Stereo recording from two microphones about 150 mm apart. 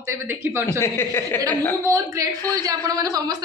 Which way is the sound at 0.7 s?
15° left (ahead or behind).